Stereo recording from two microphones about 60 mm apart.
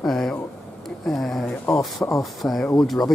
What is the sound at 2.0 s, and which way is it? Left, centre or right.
Speech, left.